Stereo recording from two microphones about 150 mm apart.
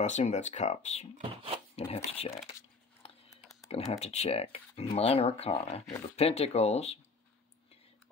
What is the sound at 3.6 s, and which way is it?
Speech, 45° left (ahead or behind).